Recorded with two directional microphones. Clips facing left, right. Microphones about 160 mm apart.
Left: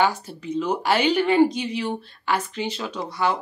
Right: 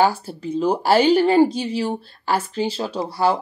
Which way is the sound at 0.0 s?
35° right (ahead or behind).